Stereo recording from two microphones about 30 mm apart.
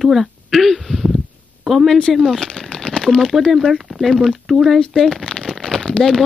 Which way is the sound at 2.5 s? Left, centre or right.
Left.